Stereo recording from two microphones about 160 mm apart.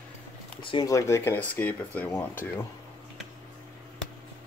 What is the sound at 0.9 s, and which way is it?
Speech, 20° left (ahead or behind).